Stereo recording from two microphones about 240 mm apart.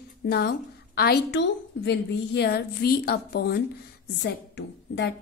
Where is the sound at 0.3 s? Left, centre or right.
Left.